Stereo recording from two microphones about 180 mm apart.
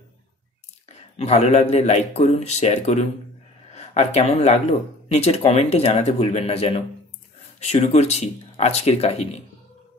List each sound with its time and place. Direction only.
1.1 s speech: 35° left (ahead or behind)